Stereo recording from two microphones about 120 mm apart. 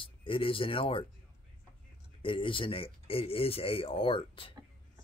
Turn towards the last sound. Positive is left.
turn(degrees=45)  # may be behind; listen again after turning